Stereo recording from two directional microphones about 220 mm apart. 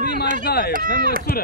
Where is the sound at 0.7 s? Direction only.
40° right (ahead or behind).